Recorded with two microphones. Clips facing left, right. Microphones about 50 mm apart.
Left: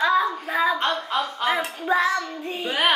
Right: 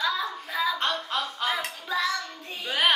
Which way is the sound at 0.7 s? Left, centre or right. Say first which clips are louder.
Left 4 dB; left.